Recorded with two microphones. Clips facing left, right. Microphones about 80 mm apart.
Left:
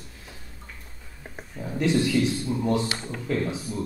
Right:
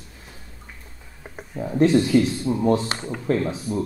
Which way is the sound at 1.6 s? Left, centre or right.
Right.